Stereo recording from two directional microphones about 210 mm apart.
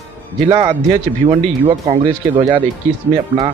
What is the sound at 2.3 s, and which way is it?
Speech, 25° right (ahead or behind).